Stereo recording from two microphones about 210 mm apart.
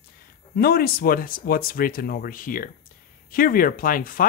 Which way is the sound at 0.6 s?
45° left (ahead or behind).